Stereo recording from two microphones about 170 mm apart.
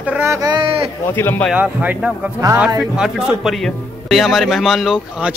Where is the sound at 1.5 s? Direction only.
10° right (ahead or behind).